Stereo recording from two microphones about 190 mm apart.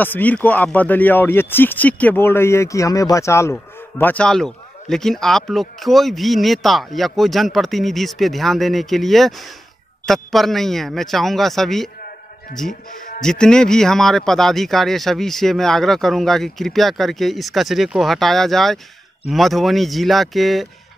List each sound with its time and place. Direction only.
0.0 s a man's voice: 10° left (ahead or behind)
12.9 s music: 45° left (ahead or behind)
13.2 s a man's voice: 5° left (ahead or behind)